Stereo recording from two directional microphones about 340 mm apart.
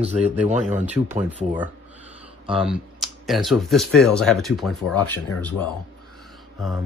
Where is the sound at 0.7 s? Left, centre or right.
Centre.